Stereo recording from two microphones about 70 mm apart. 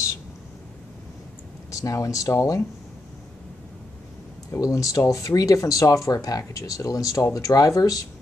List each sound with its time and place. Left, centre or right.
1.7 s speech: left
4.5 s speech: left